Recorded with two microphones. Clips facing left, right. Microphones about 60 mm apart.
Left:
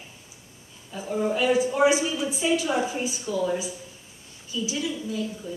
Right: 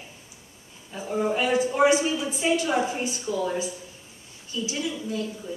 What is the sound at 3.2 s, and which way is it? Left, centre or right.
Speech, centre.